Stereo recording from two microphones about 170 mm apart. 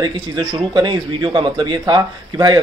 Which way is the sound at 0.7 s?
25° right (ahead or behind).